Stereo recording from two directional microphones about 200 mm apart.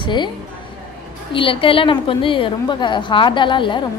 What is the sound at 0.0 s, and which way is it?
Speech, 25° left (ahead or behind).